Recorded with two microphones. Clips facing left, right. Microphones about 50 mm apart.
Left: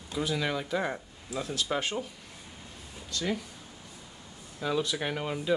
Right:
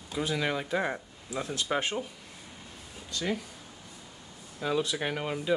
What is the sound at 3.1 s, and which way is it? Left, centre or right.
Speech, centre.